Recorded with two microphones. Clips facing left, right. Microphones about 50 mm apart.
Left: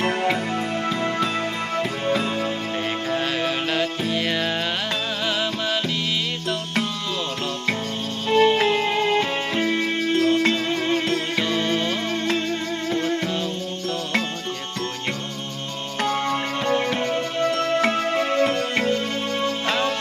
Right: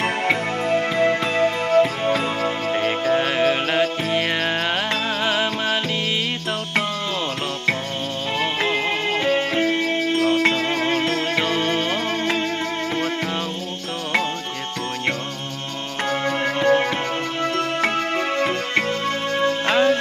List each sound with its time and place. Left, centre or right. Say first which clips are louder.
0.0 s music: right 1 dB; centre
8.3 s music: left 6 dB; centre
10.2 s music: right 2 dB; right
16.0 s music: even; centre
16.6 s music: right 4 dB; right
17.5 s music: left 1 dB; centre